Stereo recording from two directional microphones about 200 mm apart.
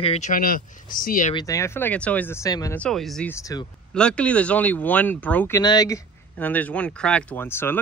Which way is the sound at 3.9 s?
5° left (ahead or behind).